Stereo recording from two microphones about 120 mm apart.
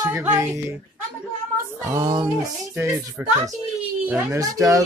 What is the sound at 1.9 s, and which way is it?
Speech, 30° right (ahead or behind).